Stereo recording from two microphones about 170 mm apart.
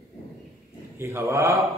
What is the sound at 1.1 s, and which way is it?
Speech, 15° right (ahead or behind).